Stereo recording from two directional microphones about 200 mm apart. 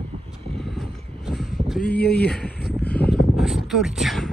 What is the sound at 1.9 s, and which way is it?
Speech, 50° left (ahead or behind).